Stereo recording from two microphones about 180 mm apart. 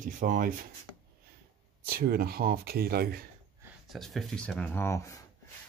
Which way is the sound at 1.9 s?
55° right (ahead or behind).